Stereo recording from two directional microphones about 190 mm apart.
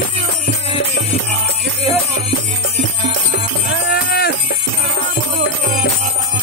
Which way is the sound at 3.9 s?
55° left (ahead or behind).